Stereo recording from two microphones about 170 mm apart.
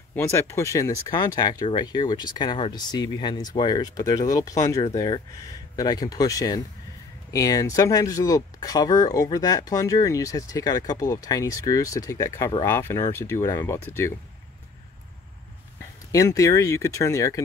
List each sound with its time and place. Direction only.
0.1 s speech: 15° left (ahead or behind)
16.1 s speech: 20° left (ahead or behind)